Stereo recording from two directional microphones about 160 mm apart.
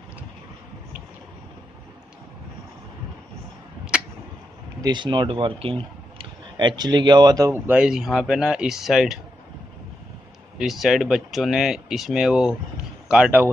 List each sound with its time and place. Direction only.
4.8 s speech: 30° right (ahead or behind); by 9.2 s centre (ahead or behind)
10.6 s speech: centre (ahead or behind)